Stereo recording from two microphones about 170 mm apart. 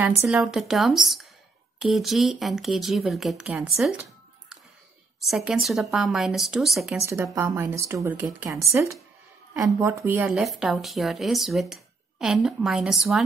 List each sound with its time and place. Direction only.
0.3 s speech: centre (ahead or behind)
5.2 s speech: centre (ahead or behind)
7.1 s a woman's voice: 15° right (ahead or behind)
10.3 s speech: centre (ahead or behind)